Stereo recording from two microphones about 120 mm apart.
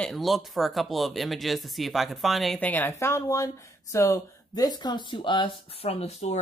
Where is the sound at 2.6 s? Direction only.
15° left (ahead or behind); by 5.5 s 40° left (ahead or behind).